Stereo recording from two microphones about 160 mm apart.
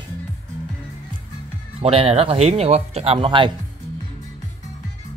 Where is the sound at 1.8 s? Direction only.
35° right (ahead or behind).